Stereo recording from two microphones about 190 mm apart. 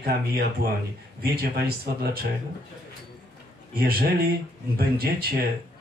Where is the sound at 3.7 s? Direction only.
50° right (ahead or behind).